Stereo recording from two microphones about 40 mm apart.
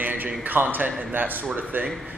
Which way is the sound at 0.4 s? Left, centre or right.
Right.